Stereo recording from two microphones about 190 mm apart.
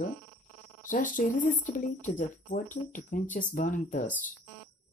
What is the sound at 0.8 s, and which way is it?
Speech, 45° left (ahead or behind).